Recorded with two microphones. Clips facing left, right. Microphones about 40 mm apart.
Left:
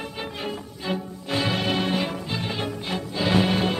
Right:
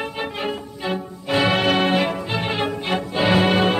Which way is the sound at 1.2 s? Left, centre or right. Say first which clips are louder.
Right 7 dB; right.